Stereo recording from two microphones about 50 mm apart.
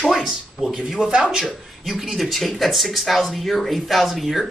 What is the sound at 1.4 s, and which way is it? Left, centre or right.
Speech, centre.